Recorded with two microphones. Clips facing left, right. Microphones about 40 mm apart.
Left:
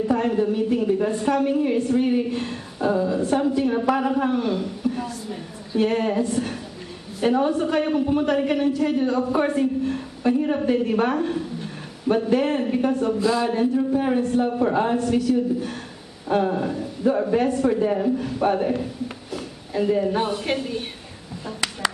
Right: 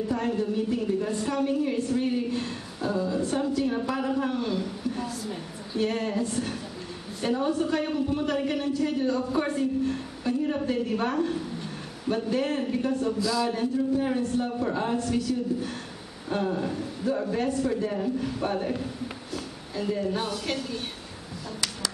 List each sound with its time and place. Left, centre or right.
0.1 s a woman's voice: left
7.2 s a woman's voice: left
16.6 s a man's voice: centre
17.0 s a woman's voice: left